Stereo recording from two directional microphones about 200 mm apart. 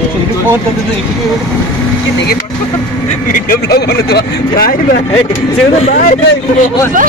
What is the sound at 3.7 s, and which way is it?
Speech, 55° left (ahead or behind).